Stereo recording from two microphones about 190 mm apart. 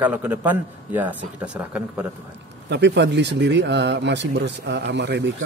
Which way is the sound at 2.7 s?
65° right (ahead or behind).